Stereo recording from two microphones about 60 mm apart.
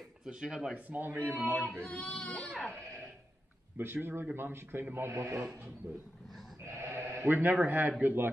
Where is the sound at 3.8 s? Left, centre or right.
Right.